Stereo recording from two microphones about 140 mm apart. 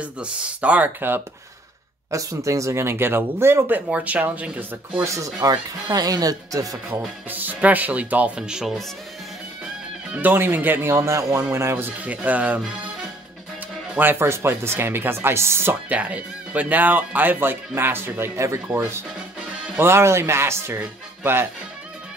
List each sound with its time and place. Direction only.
0.0 s speech: 10° right (ahead or behind)
7.2 s speech: 10° right (ahead or behind)
10.1 s speech: 15° right (ahead or behind)
13.9 s speech: 15° right (ahead or behind)